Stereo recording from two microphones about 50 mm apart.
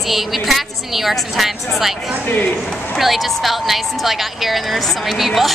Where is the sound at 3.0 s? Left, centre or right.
Centre.